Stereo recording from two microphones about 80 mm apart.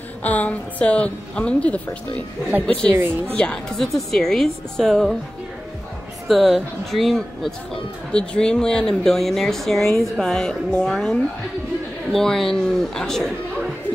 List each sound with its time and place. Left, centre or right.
0.2 s a woman's voice: centre
3.0 s a woman's voice: right
3.3 s speech: centre
6.2 s a woman's voice: centre